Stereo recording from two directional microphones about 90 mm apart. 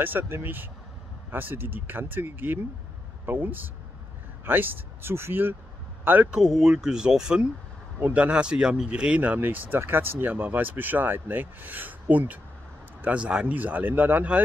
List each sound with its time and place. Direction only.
0.0 s speech: 20° right (ahead or behind)
6.4 s speech: 5° right (ahead or behind)